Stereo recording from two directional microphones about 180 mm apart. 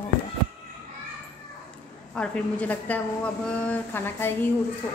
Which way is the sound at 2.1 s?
5° left (ahead or behind).